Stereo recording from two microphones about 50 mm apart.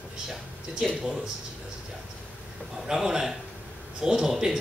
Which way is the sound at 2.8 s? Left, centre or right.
Centre.